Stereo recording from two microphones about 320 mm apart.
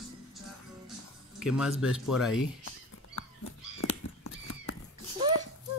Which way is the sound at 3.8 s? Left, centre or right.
Left.